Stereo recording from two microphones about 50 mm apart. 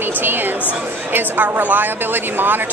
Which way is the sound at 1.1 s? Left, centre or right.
Right.